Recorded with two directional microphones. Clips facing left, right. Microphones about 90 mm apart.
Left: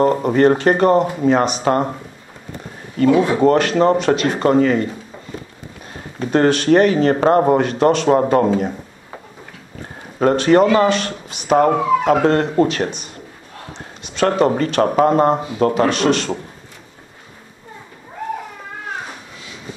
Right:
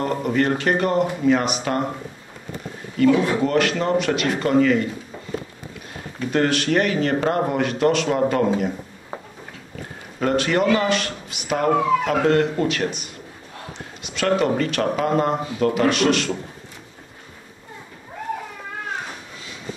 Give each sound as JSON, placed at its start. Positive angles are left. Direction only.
{"t": 0.0, "sound": "speech", "side_deg": 35}
{"t": 3.1, "sound": "speech", "side_deg": 25}
{"t": 6.1, "sound": "speech", "side_deg": 35}
{"t": 10.1, "sound": "speech", "side_deg": 35}